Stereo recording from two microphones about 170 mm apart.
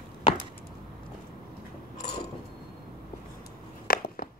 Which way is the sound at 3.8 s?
60° left (ahead or behind).